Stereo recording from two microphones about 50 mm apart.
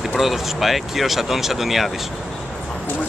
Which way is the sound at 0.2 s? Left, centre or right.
Centre.